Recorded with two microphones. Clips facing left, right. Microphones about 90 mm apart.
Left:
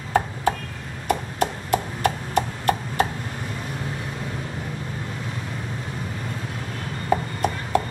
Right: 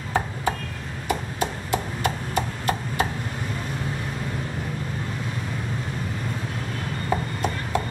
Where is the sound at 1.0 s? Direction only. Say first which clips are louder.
Left 3 dB; 55° left (ahead or behind).